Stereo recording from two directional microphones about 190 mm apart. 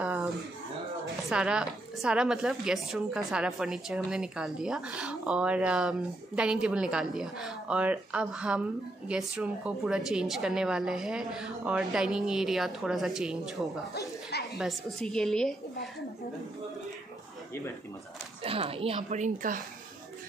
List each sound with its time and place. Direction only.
0.0 s a sound: 5° right (ahead or behind)
1.3 s a woman's voice: 5° right (ahead or behind)
18.4 s a woman's voice: 30° right (ahead or behind)